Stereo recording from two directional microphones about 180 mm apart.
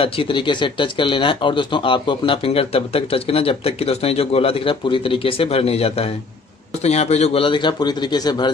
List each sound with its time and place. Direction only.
0.0 s a man's voice: 30° left (ahead or behind)